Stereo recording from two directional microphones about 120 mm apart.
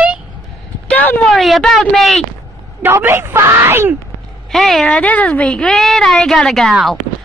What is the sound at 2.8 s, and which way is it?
A woman's voice, 20° right (ahead or behind).